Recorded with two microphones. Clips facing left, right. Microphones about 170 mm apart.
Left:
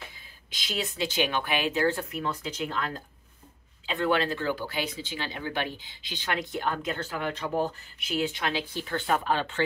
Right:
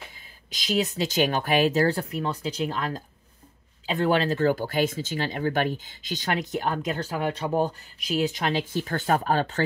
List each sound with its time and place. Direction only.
0.5 s speech: 40° right (ahead or behind)